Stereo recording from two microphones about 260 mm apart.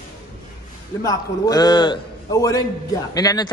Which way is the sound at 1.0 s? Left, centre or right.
Centre.